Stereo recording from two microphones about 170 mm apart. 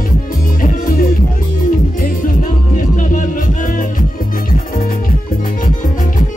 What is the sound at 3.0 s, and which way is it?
Music, 50° left (ahead or behind).